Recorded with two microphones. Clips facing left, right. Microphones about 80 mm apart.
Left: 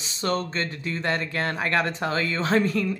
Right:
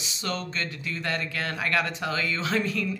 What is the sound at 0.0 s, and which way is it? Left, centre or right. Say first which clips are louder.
Speech: left 6 dB; left.